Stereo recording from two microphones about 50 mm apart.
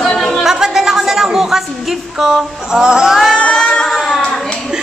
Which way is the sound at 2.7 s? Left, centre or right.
Centre.